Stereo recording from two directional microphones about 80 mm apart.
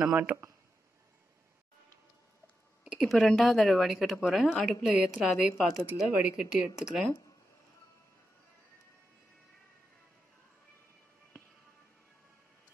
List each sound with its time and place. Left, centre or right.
0.0 s speech: centre
2.8 s speech: centre